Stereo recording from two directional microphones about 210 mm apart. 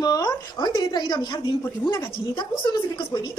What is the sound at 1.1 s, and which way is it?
A woman's voice, 20° left (ahead or behind).